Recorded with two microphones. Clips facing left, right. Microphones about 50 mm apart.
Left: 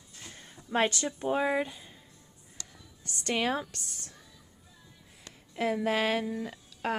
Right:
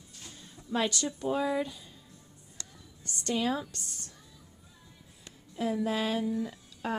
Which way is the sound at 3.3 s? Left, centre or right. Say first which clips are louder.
Left 1 dB; left.